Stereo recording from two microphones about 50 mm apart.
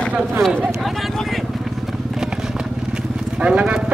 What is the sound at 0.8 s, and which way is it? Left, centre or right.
Speech, centre.